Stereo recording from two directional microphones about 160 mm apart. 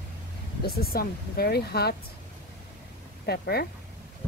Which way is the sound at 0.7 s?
75° left (ahead or behind).